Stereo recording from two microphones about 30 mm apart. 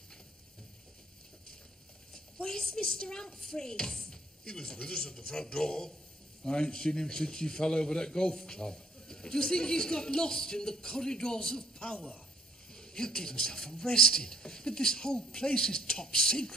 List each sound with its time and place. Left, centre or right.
2.4 s a man's voice: left